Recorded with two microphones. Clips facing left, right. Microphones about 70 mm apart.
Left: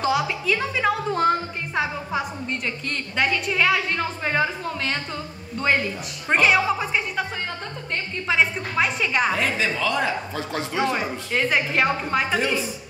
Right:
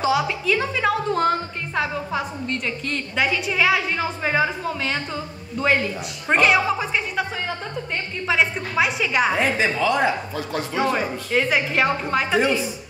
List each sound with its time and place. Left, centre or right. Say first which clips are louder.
0.0 s a woman's voice: right 2 dB; centre
8.3 s a woman's voice: right 1 dB; centre
9.3 s speech: right 3 dB; centre
11.3 s a woman's voice: right 1 dB; centre